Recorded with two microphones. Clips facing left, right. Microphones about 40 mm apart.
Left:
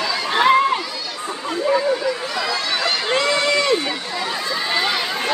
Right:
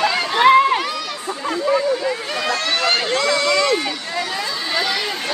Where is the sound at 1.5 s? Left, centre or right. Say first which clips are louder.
Even; centre.